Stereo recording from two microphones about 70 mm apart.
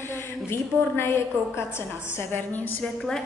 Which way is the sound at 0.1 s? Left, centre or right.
Left.